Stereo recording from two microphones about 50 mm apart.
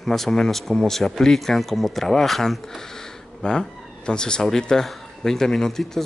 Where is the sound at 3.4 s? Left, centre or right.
Centre.